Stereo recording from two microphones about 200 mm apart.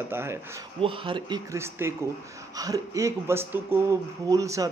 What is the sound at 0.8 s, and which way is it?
Speech, 25° right (ahead or behind).